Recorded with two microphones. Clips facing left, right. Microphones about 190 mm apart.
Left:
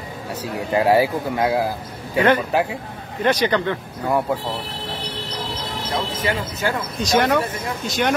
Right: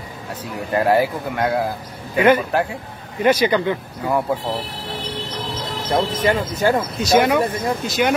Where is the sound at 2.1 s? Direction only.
10° right (ahead or behind).